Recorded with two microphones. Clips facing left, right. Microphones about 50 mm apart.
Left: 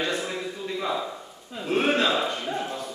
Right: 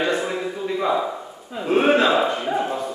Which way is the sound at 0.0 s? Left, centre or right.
Centre.